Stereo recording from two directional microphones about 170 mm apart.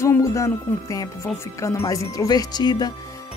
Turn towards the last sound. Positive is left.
turn(degrees=20)  # may be behind; listen again after turning